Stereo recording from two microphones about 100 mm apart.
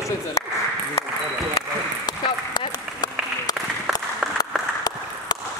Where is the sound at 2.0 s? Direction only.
40° left (ahead or behind).